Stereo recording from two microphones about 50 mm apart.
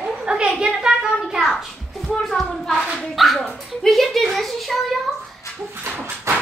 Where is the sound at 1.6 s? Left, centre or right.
Centre.